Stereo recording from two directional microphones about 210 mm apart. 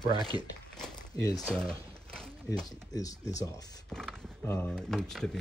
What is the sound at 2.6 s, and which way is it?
Speech, 15° left (ahead or behind).